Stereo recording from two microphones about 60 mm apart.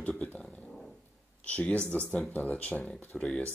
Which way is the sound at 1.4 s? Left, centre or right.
Left.